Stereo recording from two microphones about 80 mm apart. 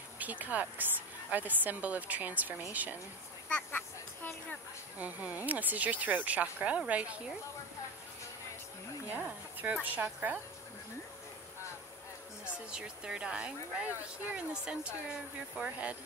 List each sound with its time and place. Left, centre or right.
0.2 s speech: centre
3.4 s a sound: left
4.9 s speech: centre
9.1 s speech: right
12.5 s speech: centre